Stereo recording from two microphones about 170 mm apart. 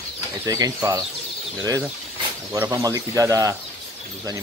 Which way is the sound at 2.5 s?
15° right (ahead or behind).